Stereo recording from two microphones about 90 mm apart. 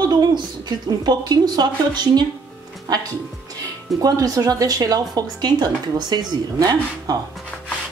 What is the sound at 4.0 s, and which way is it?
Speech, 45° right (ahead or behind).